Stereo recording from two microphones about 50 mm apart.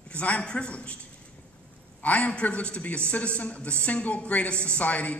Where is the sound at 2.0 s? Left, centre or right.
Left.